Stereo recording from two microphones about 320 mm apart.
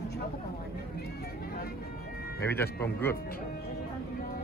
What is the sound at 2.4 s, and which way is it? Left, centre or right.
Speech, centre.